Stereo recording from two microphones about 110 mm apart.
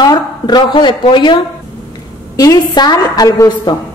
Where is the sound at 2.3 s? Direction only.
35° left (ahead or behind).